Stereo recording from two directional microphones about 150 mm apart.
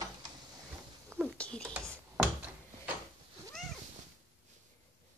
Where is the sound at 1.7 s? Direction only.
5° right (ahead or behind).